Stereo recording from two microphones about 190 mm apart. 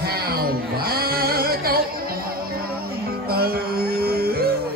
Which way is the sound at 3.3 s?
55° right (ahead or behind).